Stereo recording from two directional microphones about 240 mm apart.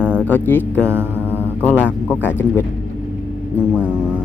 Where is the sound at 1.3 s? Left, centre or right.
Centre.